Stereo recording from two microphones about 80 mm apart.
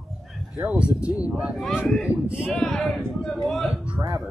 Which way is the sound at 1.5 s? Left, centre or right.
Centre.